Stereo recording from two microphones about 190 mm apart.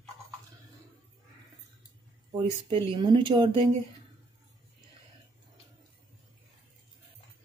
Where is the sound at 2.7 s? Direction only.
25° right (ahead or behind).